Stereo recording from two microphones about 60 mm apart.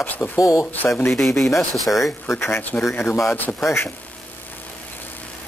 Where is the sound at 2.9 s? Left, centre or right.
Left.